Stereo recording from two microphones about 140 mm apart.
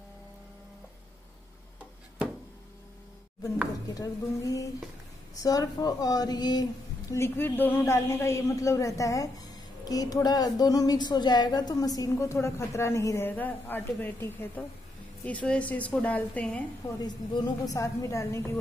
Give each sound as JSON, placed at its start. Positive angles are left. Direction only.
{"t": 3.9, "sound": "a woman's voice", "side_deg": 25}
{"t": 17.0, "sound": "a woman's voice", "side_deg": 30}